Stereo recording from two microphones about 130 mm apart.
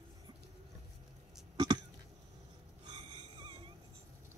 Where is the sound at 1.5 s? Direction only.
30° right (ahead or behind).